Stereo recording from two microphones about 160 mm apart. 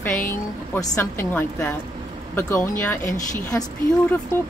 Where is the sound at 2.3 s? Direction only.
15° left (ahead or behind).